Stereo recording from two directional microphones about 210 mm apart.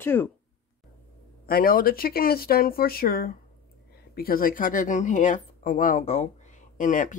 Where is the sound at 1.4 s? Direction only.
45° left (ahead or behind).